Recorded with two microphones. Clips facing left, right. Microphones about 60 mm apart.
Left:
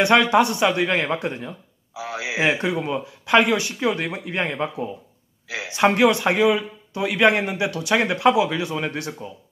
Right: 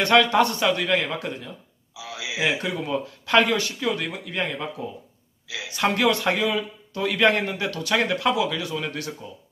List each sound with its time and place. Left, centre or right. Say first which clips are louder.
0.0 s a man's voice: left 2 dB; centre